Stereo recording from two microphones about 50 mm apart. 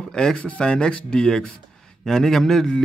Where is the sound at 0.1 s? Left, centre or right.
Centre.